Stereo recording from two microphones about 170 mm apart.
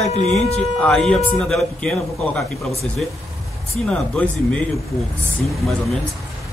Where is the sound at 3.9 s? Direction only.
5° left (ahead or behind).